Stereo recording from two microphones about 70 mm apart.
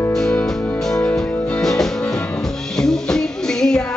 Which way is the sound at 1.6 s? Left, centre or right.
Centre.